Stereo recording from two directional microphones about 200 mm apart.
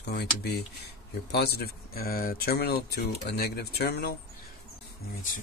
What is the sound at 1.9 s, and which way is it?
Speech, 45° left (ahead or behind).